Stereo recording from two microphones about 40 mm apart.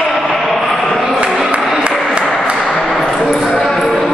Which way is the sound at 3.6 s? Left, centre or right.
Centre.